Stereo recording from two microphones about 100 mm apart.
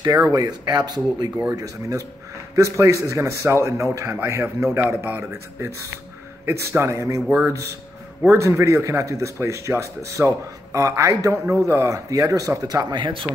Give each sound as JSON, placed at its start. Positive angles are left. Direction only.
{"t": 0.0, "sound": "speech", "side_deg": -40}
{"t": 1.5, "sound": "a man's voice", "side_deg": -30}